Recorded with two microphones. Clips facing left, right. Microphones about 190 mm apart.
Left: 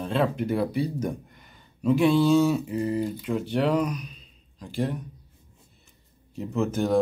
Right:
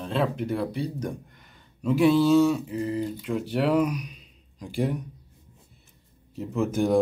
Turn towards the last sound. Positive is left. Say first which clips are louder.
# right 1 dB
turn(degrees=-10)  # may be behind; listen again after turning